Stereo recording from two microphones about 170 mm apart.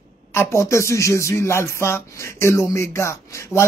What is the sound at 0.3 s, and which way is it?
Music, 15° left (ahead or behind).